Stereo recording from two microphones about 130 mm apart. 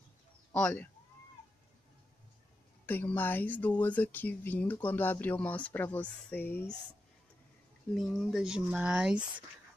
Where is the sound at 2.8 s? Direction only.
15° left (ahead or behind).